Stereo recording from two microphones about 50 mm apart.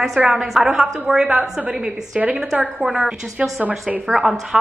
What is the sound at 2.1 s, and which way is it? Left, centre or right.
Speech, right.